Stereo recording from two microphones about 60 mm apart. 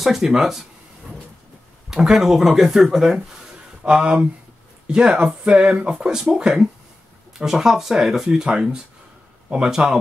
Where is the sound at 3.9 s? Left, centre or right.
Centre.